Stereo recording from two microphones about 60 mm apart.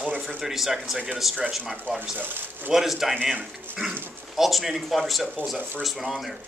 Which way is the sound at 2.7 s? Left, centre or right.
Centre.